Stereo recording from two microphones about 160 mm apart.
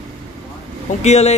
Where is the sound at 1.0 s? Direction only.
45° left (ahead or behind).